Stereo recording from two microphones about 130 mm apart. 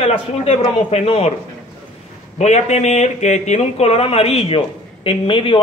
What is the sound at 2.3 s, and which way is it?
Speech, 60° left (ahead or behind).